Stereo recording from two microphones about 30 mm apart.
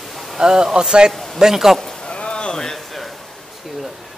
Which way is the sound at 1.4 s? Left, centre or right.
Centre.